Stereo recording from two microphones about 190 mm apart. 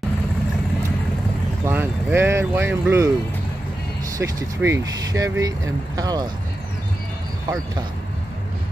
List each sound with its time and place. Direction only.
1.7 s speech: 10° right (ahead or behind)
4.2 s speech: 15° right (ahead or behind)